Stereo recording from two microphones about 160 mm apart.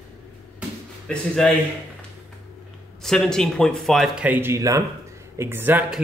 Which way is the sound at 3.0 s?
5° left (ahead or behind).